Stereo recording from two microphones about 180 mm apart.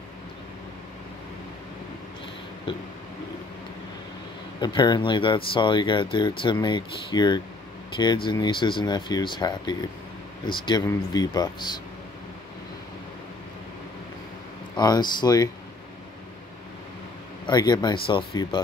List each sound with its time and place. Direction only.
4.6 s speech: 25° left (ahead or behind)
14.8 s speech: 25° left (ahead or behind)
17.5 s speech: 20° left (ahead or behind)